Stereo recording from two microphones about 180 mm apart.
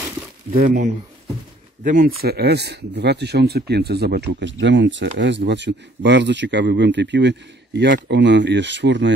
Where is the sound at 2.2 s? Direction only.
65° right (ahead or behind).